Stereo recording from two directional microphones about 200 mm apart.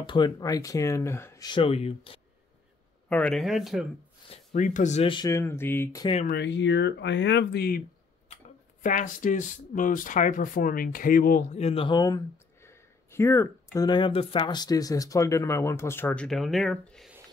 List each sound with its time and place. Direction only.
0.0 s speech: 25° left (ahead or behind)
3.1 s speech: 5° left (ahead or behind)
4.5 s speech: 40° left (ahead or behind); by 6.0 s 15° left (ahead or behind)
6.2 s speech: 60° left (ahead or behind)
8.8 s speech: 40° left (ahead or behind); by 12.2 s 20° left (ahead or behind)
12.6 s a sound: 15° left (ahead or behind)
13.7 s speech: 20° left (ahead or behind); by 17.1 s 5° left (ahead or behind)